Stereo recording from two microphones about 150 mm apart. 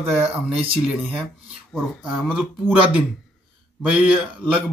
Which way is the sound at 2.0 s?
5° right (ahead or behind).